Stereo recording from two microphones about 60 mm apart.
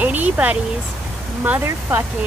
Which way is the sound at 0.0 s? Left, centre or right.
Right.